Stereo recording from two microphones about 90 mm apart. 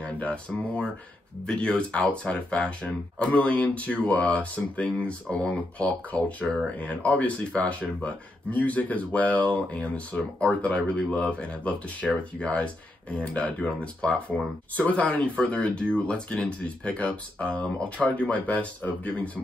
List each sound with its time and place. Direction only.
0.0 s speech: 10° left (ahead or behind)